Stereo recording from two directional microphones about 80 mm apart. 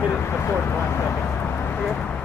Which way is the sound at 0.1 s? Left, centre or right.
Left.